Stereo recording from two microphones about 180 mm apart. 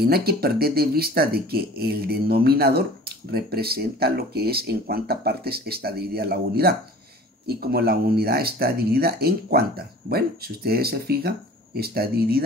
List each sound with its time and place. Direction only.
0.0 s speech: 60° right (ahead or behind)